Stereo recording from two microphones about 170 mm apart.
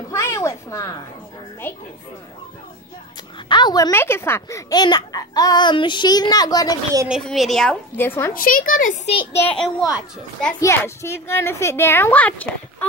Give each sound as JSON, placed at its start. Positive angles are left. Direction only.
{"t": 0.1, "sound": "a sound", "side_deg": 15}
{"t": 1.6, "sound": "a woman's voice", "side_deg": 10}
{"t": 3.4, "sound": "a child's voice", "side_deg": 25}
{"t": 7.1, "sound": "a woman's voice", "side_deg": 0}
{"t": 8.4, "sound": "speech", "side_deg": 55}
{"t": 9.3, "sound": "a woman's voice", "side_deg": 10}
{"t": 9.6, "sound": "a woman's voice", "side_deg": 0}
{"t": 10.6, "sound": "a woman's voice", "side_deg": 15}